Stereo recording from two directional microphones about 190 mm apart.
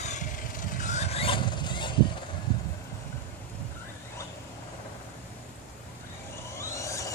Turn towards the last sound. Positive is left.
turn(degrees=15)  # may be behind; listen again after turning